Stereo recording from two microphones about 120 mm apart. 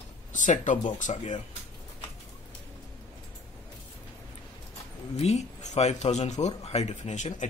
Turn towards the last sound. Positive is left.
turn(degrees=85)